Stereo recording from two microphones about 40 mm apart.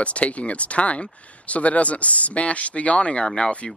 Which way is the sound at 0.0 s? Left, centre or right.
Left.